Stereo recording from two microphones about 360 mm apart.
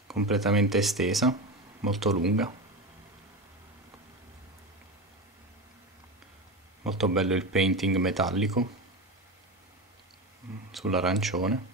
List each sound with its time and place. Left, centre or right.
0.1 s speech: centre
6.8 s speech: centre
10.7 s speech: centre